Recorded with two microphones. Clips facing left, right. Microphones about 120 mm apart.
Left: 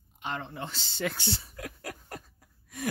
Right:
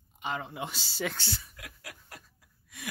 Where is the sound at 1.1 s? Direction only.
25° left (ahead or behind); by 2.9 s 45° left (ahead or behind).